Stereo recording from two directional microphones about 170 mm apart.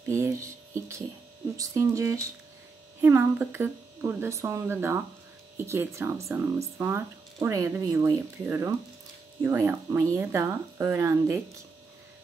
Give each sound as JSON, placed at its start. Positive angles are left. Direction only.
{"t": 0.1, "sound": "music", "side_deg": -15}
{"t": 1.6, "sound": "speech", "side_deg": -20}